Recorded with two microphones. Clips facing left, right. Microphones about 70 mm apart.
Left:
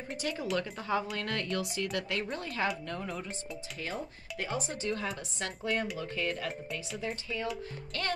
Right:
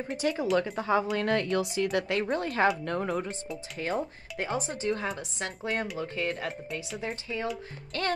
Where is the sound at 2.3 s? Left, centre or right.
Right.